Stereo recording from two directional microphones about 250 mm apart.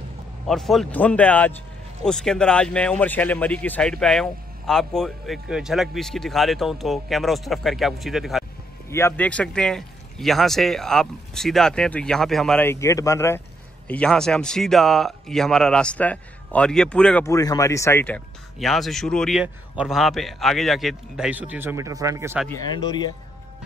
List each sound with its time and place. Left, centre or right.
0.5 s speech: centre
8.8 s speech: centre
22.5 s speech: centre